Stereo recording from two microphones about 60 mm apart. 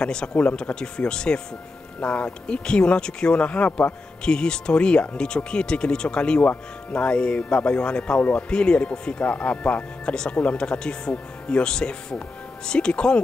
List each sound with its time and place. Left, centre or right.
0.0 s speech: centre